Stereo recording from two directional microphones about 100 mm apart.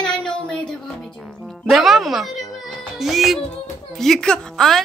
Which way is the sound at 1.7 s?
Centre (ahead or behind).